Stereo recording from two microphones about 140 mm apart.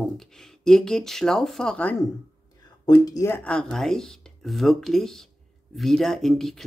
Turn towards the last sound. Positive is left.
turn(degrees=0)  # may be behind; listen again after turning